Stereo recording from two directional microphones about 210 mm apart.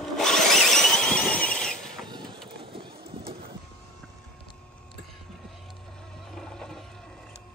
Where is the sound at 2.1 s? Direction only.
20° right (ahead or behind).